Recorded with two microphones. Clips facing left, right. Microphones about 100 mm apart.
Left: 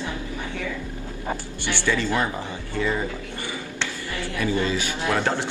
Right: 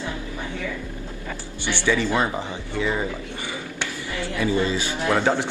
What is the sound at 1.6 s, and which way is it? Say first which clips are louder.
A man's voice: right 3 dB; 15° right (ahead or behind).